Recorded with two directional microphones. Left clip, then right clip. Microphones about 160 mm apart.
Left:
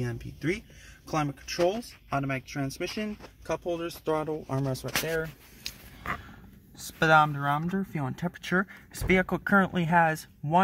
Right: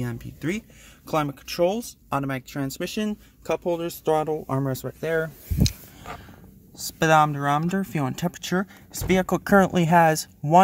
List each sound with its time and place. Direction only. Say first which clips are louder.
0.0 s speech: right 2 dB; 25° right (ahead or behind)
4.5 s speech: right 4 dB; 45° right (ahead or behind)
7.0 s speech: right 3 dB; 25° right (ahead or behind)
8.5 s speech: left 2 dB; 15° right (ahead or behind)
9.4 s speech: right 6 dB; 35° right (ahead or behind)